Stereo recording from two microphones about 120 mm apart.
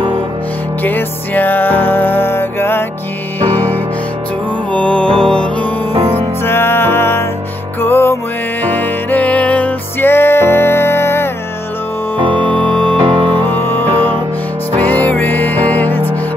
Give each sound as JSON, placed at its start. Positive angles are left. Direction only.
{"t": 0.8, "sound": "music", "side_deg": 15}
{"t": 6.4, "sound": "music", "side_deg": 20}
{"t": 12.4, "sound": "music", "side_deg": 10}
{"t": 13.0, "sound": "music", "side_deg": -40}
{"t": 13.4, "sound": "music", "side_deg": 15}